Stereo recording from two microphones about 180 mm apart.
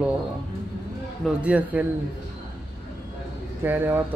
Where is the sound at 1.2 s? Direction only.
5° right (ahead or behind).